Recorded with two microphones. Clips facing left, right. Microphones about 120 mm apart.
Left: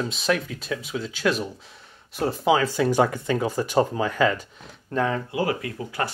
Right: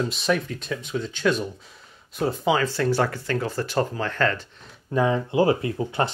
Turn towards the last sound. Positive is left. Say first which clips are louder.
# right 4 dB
turn(degrees=-25)  # may be behind; listen again after turning